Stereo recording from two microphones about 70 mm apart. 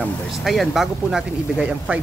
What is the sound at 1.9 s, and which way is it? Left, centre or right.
Speech, centre.